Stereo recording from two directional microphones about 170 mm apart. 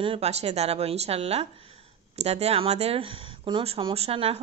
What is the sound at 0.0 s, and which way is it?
A woman's voice, 35° right (ahead or behind).